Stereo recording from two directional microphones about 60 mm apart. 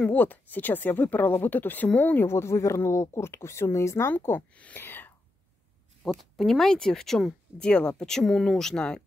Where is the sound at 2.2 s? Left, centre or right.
Left.